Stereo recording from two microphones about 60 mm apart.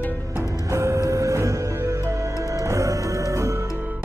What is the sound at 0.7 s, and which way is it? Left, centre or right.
Music, right.